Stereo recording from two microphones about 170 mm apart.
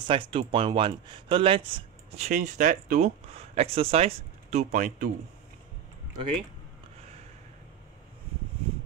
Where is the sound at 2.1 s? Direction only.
40° right (ahead or behind).